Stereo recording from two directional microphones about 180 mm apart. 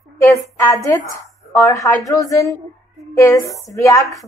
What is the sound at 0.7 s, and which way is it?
A woman's voice, 20° left (ahead or behind).